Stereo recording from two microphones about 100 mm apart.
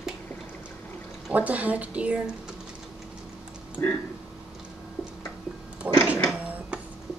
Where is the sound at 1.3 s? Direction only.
15° right (ahead or behind).